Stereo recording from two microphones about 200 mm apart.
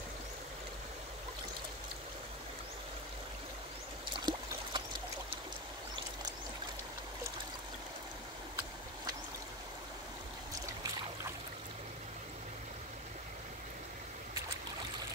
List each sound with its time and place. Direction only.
4.1 s trickle: 20° right (ahead or behind)